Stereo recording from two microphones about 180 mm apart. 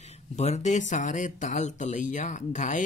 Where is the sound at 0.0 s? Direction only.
40° left (ahead or behind).